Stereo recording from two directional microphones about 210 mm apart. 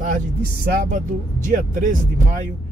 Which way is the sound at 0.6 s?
45° right (ahead or behind).